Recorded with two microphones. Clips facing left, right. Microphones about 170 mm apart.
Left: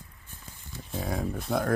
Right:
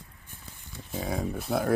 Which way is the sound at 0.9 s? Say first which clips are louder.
Right 1 dB; centre (ahead or behind).